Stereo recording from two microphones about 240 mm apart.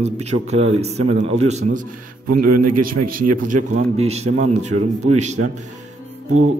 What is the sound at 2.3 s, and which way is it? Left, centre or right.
Speech, right.